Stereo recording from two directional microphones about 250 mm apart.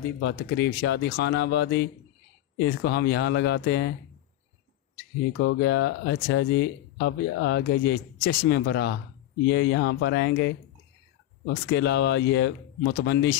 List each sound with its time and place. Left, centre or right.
0.2 s speech: left
4.9 s speech: left
11.7 s speech: left